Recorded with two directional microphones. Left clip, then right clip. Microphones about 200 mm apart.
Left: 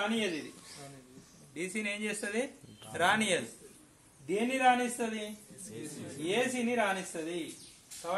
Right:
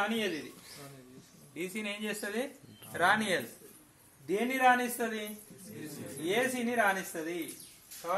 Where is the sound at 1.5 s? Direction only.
20° left (ahead or behind).